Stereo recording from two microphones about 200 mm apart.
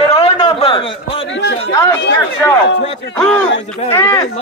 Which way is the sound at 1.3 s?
60° left (ahead or behind).